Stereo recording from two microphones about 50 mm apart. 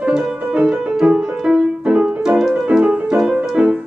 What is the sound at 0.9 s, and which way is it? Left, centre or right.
Music, centre.